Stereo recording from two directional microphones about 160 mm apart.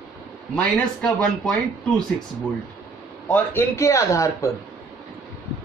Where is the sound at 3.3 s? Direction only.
15° left (ahead or behind).